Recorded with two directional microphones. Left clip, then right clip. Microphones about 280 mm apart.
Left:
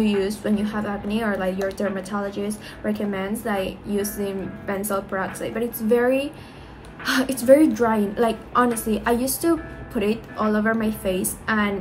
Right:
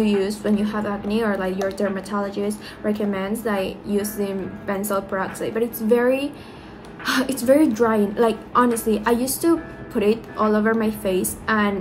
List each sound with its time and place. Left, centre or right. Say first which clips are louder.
0.0 s a woman's voice: right 2 dB; centre